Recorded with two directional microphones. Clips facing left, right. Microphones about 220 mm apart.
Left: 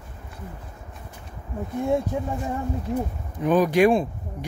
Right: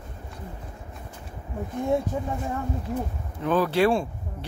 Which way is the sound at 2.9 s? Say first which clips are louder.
Left 3 dB; 15° left (ahead or behind).